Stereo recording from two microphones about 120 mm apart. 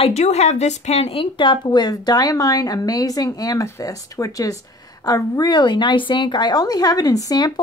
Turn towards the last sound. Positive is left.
turn(degrees=30)  # may be behind; listen again after turning